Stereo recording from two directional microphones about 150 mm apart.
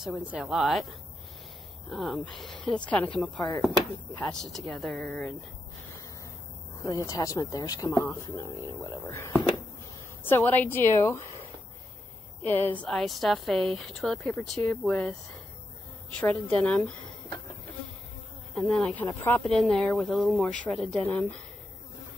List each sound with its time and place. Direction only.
0.0 s a woman's voice: 5° right (ahead or behind)
1.9 s a woman's voice: centre (ahead or behind)
6.8 s a woman's voice: 20° left (ahead or behind)
12.4 s a woman's voice: 15° left (ahead or behind)
16.5 s speech: 5° left (ahead or behind)
18.5 s a woman's voice: centre (ahead or behind)
19.0 s a woman's voice: 15° left (ahead or behind)
19.4 s a woman's voice: 5° left (ahead or behind)